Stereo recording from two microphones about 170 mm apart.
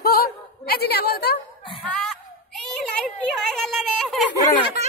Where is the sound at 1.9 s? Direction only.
Centre (ahead or behind).